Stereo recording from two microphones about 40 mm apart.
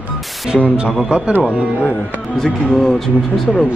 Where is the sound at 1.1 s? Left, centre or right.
Right.